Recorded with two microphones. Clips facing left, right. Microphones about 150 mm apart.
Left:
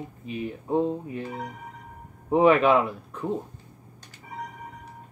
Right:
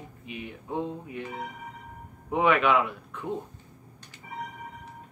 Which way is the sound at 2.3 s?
35° left (ahead or behind).